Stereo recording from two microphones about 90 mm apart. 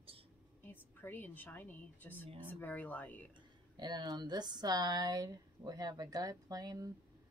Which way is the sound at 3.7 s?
55° right (ahead or behind).